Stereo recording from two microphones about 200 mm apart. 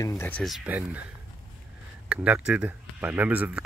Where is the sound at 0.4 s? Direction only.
5° right (ahead or behind).